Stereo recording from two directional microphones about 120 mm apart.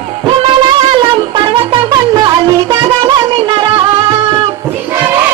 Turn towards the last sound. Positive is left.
turn(degrees=-25)  # may be behind; listen again after turning